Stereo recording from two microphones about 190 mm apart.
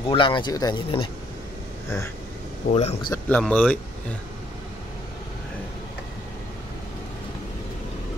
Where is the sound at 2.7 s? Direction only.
35° left (ahead or behind).